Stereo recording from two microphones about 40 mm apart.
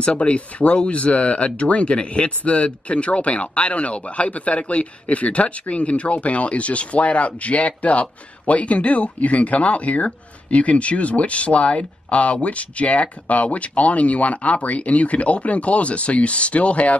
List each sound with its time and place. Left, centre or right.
0.0 s speech: left